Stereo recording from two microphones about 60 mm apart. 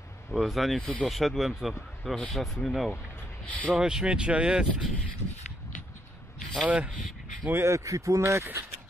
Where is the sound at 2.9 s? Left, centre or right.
Left.